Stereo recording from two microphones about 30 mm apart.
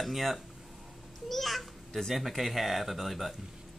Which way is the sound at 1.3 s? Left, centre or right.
Centre.